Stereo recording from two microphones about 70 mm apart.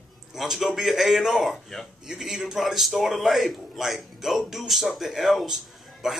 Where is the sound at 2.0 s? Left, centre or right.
Centre.